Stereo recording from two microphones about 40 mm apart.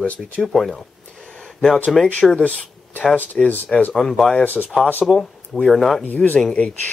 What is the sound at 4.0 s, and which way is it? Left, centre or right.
Speech, centre.